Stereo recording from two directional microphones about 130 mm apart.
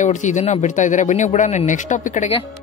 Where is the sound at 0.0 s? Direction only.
70° left (ahead or behind).